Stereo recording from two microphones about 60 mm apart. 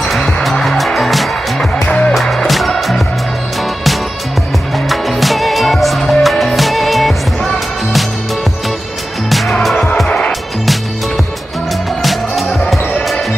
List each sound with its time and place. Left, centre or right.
0.0 s music: centre
1.9 s music: centre
2.1 s music: centre
4.7 s music: centre
9.5 s music: centre
10.0 s music: centre
12.0 s basketball bounce: centre